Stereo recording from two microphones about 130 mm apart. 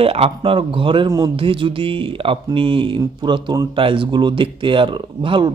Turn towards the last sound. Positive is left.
turn(degrees=-35)  # may be behind; listen again after turning